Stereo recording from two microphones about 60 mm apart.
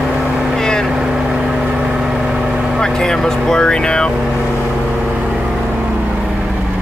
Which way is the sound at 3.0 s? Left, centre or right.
Centre.